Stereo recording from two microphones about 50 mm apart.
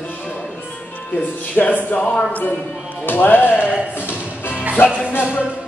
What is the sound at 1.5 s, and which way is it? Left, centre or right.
Music, left.